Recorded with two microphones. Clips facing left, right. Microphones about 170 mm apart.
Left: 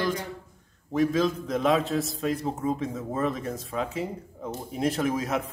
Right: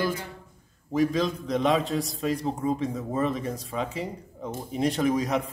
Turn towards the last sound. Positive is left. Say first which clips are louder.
# right 2 dB
turn(degrees=0)  # may be behind; listen again after turning